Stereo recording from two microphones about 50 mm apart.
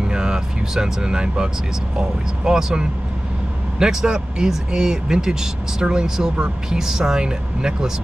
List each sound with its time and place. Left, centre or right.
0.0 s speech: centre